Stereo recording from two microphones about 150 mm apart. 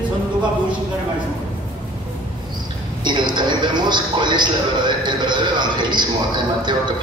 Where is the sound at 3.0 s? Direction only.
30° right (ahead or behind).